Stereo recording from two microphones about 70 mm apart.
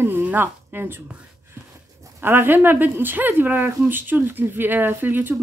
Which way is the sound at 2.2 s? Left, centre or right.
Right.